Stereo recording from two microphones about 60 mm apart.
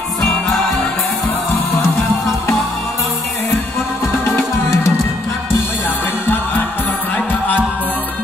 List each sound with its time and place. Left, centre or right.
4.4 s music: left
6.2 s music: left